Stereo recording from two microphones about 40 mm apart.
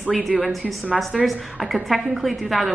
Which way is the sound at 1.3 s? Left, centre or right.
Centre.